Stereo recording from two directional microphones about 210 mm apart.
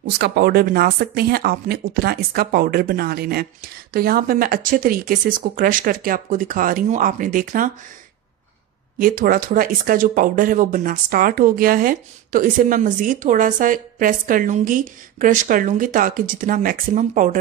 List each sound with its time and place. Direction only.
0.2 s speech: 45° right (ahead or behind)
8.9 s speech: 45° right (ahead or behind)